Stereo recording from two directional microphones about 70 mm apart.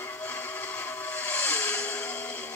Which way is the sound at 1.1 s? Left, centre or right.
Left.